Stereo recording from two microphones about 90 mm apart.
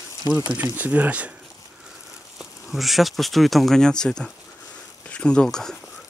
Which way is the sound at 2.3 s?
Centre (ahead or behind).